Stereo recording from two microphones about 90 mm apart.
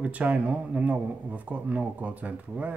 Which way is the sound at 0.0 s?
15° right (ahead or behind).